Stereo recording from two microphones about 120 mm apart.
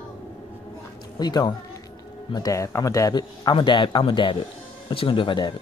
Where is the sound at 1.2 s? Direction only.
35° left (ahead or behind).